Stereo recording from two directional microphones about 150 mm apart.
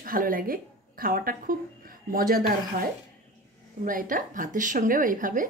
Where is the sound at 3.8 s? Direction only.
65° right (ahead or behind).